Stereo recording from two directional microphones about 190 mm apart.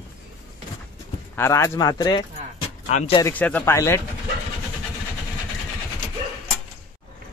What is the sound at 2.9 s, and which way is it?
Speech, 35° left (ahead or behind).